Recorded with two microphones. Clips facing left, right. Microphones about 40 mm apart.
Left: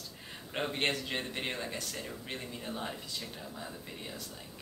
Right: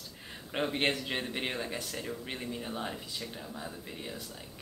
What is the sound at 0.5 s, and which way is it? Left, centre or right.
Speech, centre.